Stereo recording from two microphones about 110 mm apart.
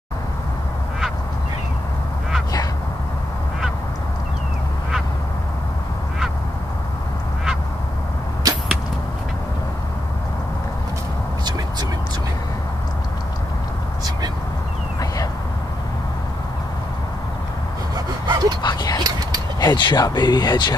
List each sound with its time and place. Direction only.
17.9 s dog: 40° right (ahead or behind)
18.6 s dog: 40° left (ahead or behind)
19.0 s a sound: 35° right (ahead or behind)
19.6 s speech: 40° left (ahead or behind)